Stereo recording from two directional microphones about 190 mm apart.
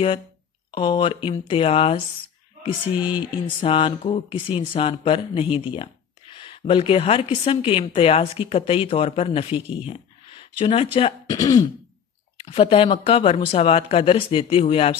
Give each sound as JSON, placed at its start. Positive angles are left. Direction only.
{"t": 0.7, "sound": "speech", "side_deg": 25}
{"t": 3.0, "sound": "speech", "side_deg": -5}
{"t": 3.6, "sound": "speech", "side_deg": 30}
{"t": 11.3, "sound": "speech", "side_deg": 20}